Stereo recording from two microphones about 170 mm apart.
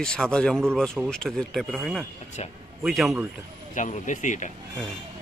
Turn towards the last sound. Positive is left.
turn(degrees=45)  # may be behind; listen again after turning